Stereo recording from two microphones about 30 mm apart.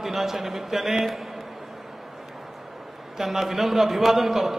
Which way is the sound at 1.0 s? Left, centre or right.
Centre.